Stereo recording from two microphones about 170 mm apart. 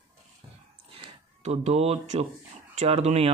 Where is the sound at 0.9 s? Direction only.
35° right (ahead or behind).